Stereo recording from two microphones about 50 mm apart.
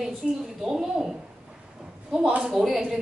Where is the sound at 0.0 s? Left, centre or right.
Centre.